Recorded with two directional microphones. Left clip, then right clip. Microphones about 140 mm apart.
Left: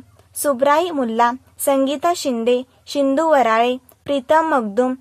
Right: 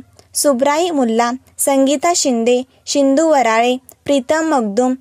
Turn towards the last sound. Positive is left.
turn(degrees=-40)  # may be behind; listen again after turning